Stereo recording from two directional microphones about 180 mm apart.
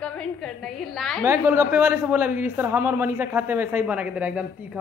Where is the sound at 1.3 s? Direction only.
15° right (ahead or behind).